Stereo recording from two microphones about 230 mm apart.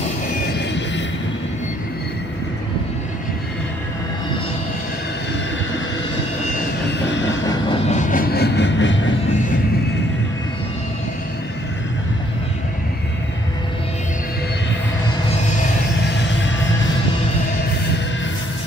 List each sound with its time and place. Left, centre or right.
0.6 s music: left
7.2 s vehicle: left
7.9 s vehicle: left